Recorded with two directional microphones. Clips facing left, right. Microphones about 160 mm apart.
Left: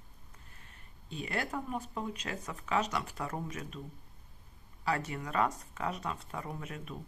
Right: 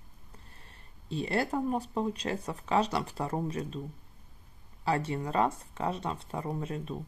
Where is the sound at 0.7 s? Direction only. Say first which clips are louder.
Right 8 dB; 35° right (ahead or behind).